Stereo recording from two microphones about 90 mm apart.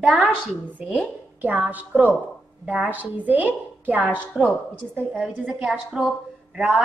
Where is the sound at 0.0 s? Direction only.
Centre (ahead or behind).